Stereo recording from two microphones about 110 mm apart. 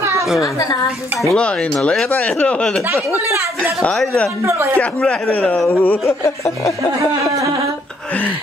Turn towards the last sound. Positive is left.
turn(degrees=25)  # may be behind; listen again after turning